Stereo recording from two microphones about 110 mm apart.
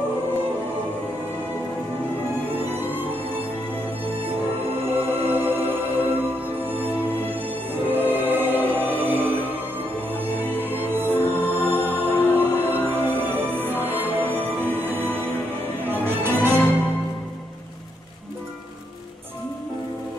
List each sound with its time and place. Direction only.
2.7 s music: 20° right (ahead or behind)
4.8 s music: 20° right (ahead or behind)
7.8 s music: 20° right (ahead or behind)
10.6 s music: 20° right (ahead or behind)
14.2 s music: 15° left (ahead or behind)
14.7 s music: 20° right (ahead or behind)